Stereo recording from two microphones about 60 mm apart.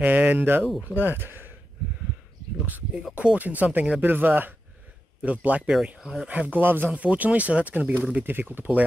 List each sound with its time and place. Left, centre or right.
0.0 s speech: right
2.5 s speech: right
5.9 s speech: centre
6.2 s speech: right
6.9 s speech: right